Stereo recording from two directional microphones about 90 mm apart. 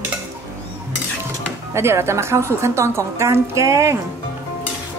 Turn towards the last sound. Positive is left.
turn(degrees=-30)  # may be behind; listen again after turning